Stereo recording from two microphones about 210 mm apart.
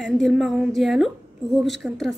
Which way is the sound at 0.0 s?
Centre (ahead or behind).